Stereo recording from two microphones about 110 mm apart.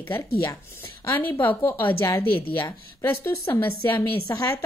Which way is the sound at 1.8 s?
20° left (ahead or behind).